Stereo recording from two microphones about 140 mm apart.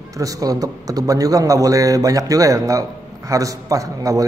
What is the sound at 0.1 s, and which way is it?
A man's voice, 25° right (ahead or behind).